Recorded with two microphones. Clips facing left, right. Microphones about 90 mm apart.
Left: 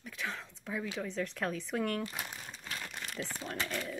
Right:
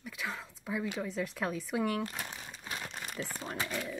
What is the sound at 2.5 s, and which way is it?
Crumpling, 15° right (ahead or behind).